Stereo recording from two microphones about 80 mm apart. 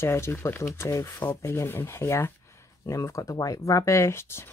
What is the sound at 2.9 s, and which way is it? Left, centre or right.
Speech, left.